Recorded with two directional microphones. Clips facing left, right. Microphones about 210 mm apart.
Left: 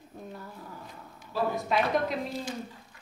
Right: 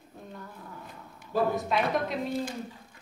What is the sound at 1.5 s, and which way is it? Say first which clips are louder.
Speech: even; centre (ahead or behind).